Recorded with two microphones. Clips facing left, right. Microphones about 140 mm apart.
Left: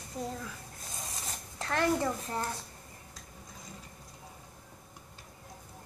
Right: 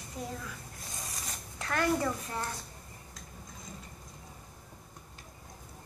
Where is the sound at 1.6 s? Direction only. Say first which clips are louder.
Left 1 dB; 30° left (ahead or behind).